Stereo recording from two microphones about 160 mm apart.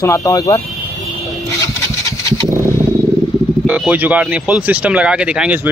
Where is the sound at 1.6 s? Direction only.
20° left (ahead or behind).